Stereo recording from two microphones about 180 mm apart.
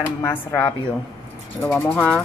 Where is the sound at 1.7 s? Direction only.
10° left (ahead or behind).